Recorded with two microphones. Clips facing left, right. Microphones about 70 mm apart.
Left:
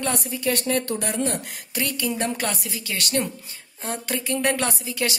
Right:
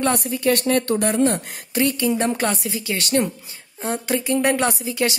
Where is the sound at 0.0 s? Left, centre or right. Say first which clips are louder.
Right 5 dB; right.